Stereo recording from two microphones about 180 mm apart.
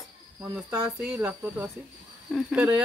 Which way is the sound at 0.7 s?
10° right (ahead or behind).